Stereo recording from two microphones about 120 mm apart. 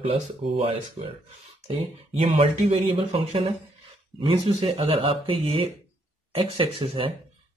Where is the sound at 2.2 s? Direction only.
60° right (ahead or behind).